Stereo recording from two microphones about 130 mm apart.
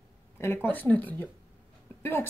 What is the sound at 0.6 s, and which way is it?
Speech, 15° left (ahead or behind).